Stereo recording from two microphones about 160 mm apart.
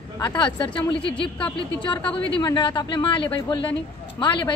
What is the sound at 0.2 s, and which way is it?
Speech, 30° left (ahead or behind).